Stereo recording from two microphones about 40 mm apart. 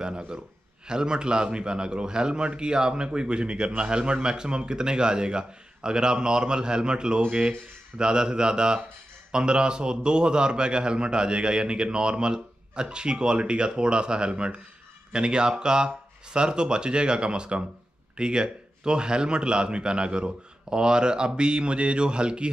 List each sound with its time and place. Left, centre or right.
0.0 s a man's voice: right